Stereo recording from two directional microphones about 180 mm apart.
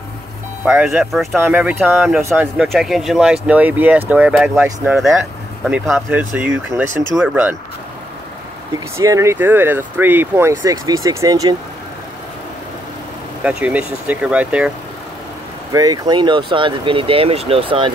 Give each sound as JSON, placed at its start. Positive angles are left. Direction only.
{"t": 0.7, "sound": "speech", "side_deg": -5}
{"t": 2.2, "sound": "speech", "side_deg": -15}
{"t": 2.5, "sound": "speech", "side_deg": -5}
{"t": 8.9, "sound": "speech", "side_deg": -15}
{"t": 13.4, "sound": "speech", "side_deg": -5}
{"t": 15.7, "sound": "speech", "side_deg": -20}